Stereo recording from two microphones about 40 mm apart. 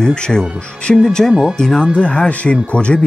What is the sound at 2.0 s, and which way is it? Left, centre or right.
Speech, left.